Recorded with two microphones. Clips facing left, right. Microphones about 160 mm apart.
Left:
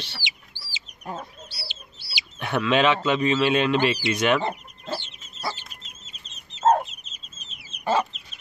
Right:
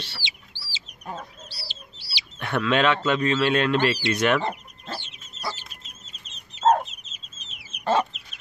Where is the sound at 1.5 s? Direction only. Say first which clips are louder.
Left 1 dB; 40° right (ahead or behind).